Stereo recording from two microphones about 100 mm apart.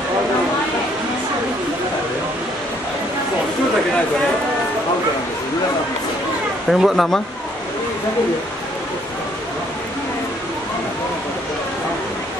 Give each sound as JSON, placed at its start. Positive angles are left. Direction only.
{"t": 6.7, "sound": "speech", "side_deg": 0}